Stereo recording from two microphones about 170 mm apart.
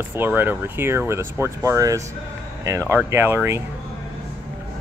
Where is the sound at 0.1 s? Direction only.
10° right (ahead or behind).